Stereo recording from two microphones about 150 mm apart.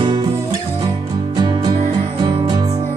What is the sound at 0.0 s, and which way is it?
Music, 30° right (ahead or behind).